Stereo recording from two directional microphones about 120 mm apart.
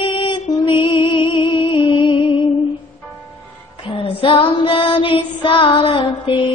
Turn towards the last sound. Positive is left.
turn(degrees=45)  # may be behind; listen again after turning